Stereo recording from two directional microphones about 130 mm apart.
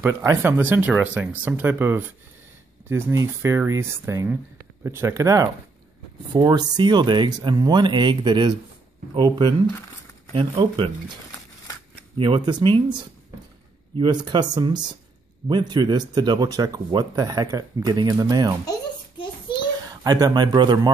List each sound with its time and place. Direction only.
0.0 s speech: 20° right (ahead or behind)
9.7 s crumpling: 20° left (ahead or behind)
10.3 s speech: 35° right (ahead or behind)
12.2 s speech: 35° right (ahead or behind)
19.9 s speech: 30° right (ahead or behind)